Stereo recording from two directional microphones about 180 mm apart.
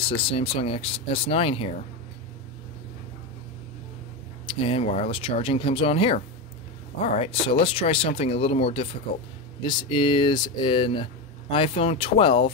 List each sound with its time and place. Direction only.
0.1 s speech: 30° left (ahead or behind)
4.5 s speech: 30° left (ahead or behind)